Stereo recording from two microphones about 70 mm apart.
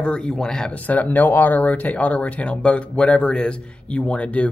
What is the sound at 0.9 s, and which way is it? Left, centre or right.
Speech, left.